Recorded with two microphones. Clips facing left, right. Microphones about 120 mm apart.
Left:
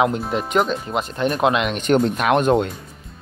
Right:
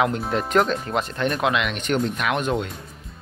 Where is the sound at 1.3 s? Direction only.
30° left (ahead or behind).